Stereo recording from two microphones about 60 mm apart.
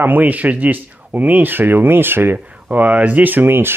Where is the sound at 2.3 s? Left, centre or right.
Centre; by 3.7 s right.